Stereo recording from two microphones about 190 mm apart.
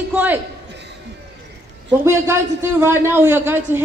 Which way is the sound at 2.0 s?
15° right (ahead or behind).